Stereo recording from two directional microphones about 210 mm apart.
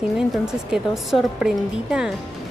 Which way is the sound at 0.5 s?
Centre (ahead or behind).